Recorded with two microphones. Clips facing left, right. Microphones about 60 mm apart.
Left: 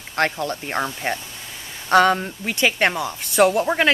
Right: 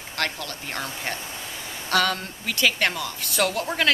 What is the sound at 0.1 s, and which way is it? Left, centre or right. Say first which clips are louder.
A woman's voice: left 7 dB; left.